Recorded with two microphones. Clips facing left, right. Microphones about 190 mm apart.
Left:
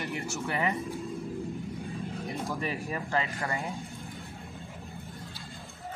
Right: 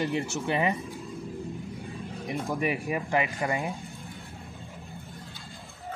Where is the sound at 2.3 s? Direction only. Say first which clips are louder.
Right 6 dB; 15° right (ahead or behind).